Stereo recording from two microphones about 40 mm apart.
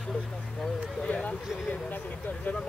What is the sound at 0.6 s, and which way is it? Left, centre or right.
Speech, centre.